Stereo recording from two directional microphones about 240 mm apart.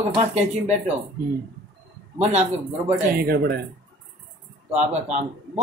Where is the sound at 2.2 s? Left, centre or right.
Right.